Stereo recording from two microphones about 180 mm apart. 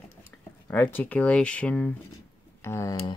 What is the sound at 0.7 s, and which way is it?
Speech, 10° left (ahead or behind).